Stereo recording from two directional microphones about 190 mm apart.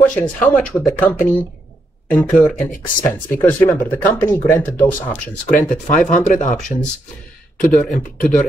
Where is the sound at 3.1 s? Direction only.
10° left (ahead or behind).